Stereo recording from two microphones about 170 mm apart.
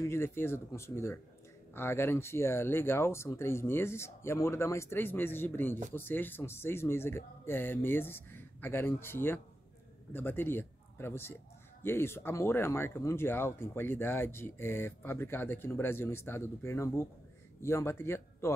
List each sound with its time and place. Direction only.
0.0 s speech: 15° left (ahead or behind)